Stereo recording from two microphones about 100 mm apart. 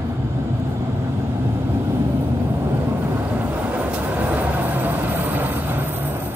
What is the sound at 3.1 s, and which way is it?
Vehicle, 15° right (ahead or behind).